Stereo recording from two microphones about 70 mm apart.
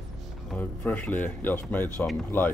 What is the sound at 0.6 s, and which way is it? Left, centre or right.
Speech, left.